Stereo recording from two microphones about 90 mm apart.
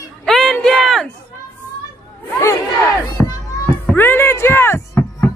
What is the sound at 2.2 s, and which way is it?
Crowd, 30° left (ahead or behind).